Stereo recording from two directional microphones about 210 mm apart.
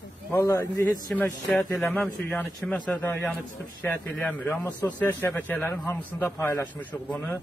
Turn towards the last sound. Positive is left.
turn(degrees=10)  # may be behind; listen again after turning